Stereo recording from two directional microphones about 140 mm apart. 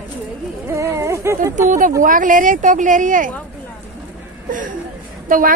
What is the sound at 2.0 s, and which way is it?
Speech, 70° right (ahead or behind).